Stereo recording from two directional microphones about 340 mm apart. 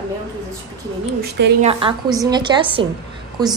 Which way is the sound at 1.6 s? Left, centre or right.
Centre.